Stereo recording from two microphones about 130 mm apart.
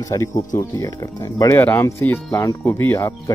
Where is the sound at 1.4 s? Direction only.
20° left (ahead or behind).